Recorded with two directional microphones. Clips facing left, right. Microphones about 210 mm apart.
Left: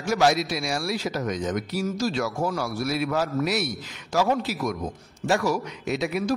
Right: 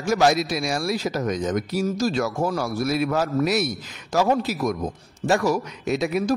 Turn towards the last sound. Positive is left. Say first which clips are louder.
# right 3 dB
turn(degrees=-40)  # may be behind; listen again after turning